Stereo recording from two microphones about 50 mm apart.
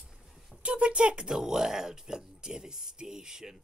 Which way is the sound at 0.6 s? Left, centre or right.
Right.